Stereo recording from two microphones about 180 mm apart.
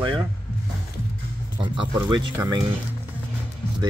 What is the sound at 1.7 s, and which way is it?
Speech, 25° right (ahead or behind).